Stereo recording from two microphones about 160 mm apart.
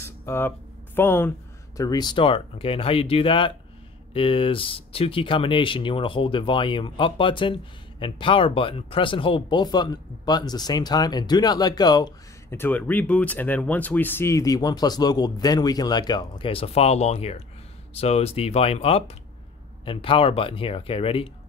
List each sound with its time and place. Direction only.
0.0 s a sound: 15° left (ahead or behind)
1.8 s speech: 25° left (ahead or behind)
12.4 s speech: 15° left (ahead or behind); by 21.3 s 35° left (ahead or behind)